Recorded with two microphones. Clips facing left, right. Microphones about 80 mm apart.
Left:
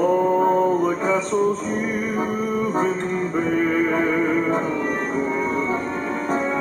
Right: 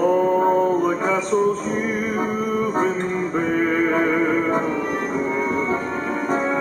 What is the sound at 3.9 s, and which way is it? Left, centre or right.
Music, centre.